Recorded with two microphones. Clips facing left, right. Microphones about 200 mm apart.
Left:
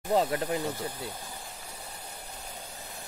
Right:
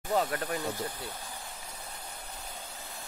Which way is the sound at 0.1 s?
20° left (ahead or behind).